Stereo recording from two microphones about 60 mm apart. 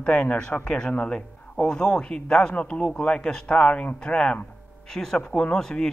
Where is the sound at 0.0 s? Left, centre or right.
Centre.